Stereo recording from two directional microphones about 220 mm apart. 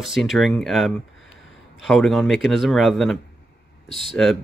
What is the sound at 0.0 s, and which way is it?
Speech, centre (ahead or behind).